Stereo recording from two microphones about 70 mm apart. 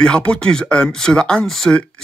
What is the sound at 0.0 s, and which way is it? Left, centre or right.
Speech, centre.